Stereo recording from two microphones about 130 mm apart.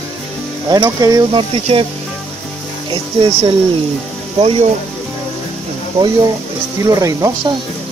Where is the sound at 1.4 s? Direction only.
45° right (ahead or behind).